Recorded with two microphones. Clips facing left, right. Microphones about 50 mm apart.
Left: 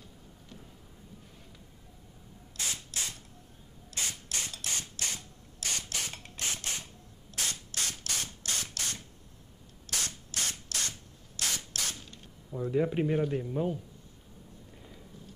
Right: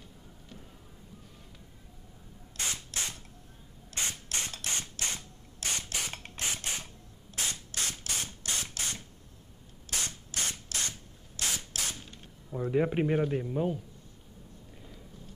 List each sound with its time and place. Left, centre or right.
2.5 s rub: right
3.9 s mechanisms: right
6.4 s a sound: right
7.3 s spray: centre
8.5 s a sound: centre
9.8 s rub: centre
11.3 s spray: centre
12.5 s speech: right; by 13.7 s centre